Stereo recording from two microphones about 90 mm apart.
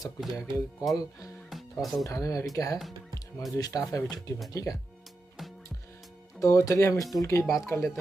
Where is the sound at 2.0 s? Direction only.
40° left (ahead or behind).